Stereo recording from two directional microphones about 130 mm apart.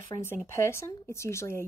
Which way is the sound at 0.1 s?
20° left (ahead or behind).